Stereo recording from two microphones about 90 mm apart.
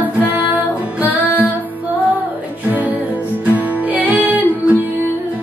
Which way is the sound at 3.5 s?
15° right (ahead or behind).